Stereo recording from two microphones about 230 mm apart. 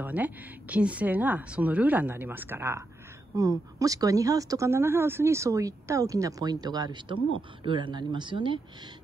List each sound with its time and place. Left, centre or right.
0.0 s speech: centre